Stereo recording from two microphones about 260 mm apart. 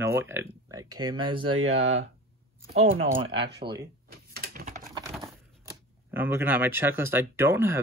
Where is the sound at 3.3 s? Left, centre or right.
Right.